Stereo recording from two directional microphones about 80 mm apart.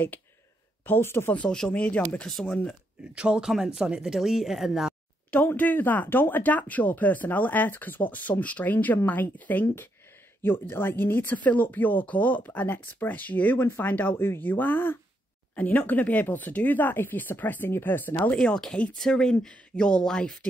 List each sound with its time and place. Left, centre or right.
0.8 s speech: left
1.3 s speech: centre
2.7 s speech: centre
5.3 s speech: left
18.2 s speech: centre